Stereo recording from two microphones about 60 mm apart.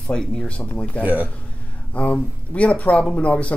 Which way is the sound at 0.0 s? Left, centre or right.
Centre.